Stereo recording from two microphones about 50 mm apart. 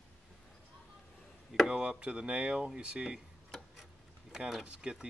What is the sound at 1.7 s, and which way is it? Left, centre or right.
Speech, centre.